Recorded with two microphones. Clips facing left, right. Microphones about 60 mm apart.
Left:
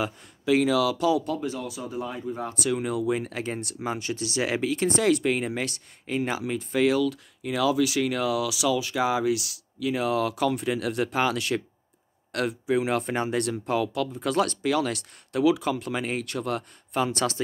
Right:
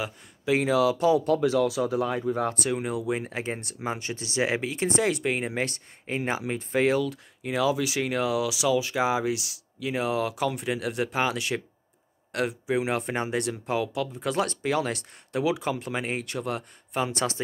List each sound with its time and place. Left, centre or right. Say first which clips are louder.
0.5 s speech: left 1 dB; right
1.4 s speech: right 9 dB; right
2.7 s speech: left 2 dB; right